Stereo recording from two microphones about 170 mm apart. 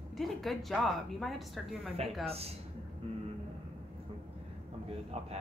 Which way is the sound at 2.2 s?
35° right (ahead or behind).